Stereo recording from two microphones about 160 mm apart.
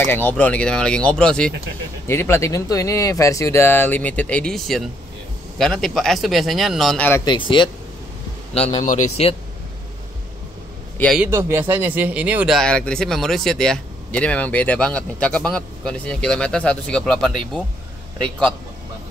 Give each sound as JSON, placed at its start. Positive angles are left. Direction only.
{"t": 0.0, "sound": "speech", "side_deg": 15}
{"t": 2.0, "sound": "speech", "side_deg": 15}
{"t": 7.2, "sound": "speech", "side_deg": 30}
{"t": 8.8, "sound": "speech", "side_deg": 45}
{"t": 11.1, "sound": "speech", "side_deg": -15}
{"t": 12.5, "sound": "speech", "side_deg": 5}